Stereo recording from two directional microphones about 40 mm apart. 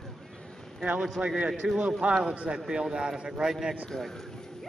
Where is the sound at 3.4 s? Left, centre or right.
Centre.